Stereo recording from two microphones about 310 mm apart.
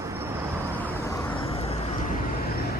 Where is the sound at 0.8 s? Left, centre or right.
Centre.